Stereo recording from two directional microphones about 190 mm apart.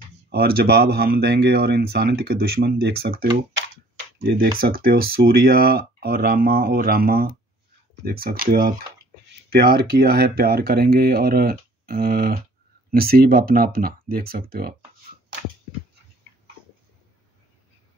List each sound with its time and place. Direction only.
0.3 s speech: 55° right (ahead or behind)